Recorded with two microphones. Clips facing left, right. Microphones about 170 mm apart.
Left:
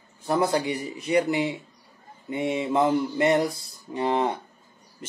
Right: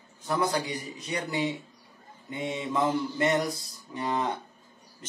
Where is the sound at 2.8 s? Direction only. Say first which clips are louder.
Left 2 dB; 30° left (ahead or behind).